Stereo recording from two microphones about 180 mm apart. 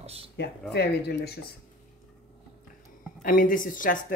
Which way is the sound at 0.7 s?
65° left (ahead or behind).